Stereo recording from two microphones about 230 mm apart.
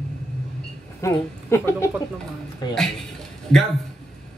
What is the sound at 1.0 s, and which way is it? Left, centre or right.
Speech, centre.